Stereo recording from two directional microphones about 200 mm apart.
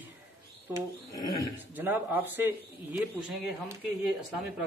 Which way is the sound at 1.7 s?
10° right (ahead or behind).